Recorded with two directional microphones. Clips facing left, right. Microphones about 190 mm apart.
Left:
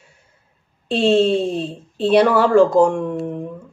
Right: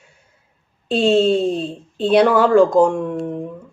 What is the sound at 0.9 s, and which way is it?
Speech, 5° right (ahead or behind).